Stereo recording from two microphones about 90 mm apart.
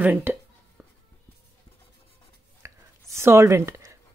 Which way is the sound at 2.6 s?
30° right (ahead or behind).